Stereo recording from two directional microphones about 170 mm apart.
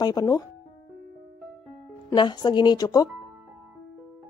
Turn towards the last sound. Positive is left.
turn(degrees=20)  # may be behind; listen again after turning